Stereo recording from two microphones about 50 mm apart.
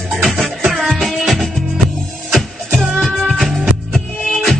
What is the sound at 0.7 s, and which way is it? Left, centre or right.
Music, centre.